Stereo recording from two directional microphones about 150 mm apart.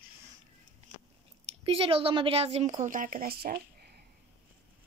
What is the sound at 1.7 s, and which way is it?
A woman's voice, 40° right (ahead or behind).